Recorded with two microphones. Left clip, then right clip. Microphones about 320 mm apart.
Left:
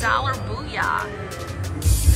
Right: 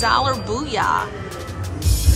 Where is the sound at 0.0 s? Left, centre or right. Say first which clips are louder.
Right 4 dB; centre.